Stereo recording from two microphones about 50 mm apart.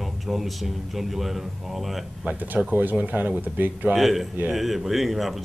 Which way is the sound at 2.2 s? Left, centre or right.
Right.